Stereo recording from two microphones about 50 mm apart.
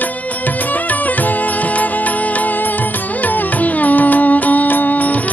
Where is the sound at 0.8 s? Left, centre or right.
Left.